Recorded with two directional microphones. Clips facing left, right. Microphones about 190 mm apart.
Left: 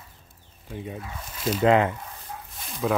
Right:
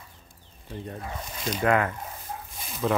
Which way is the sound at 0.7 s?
5° left (ahead or behind).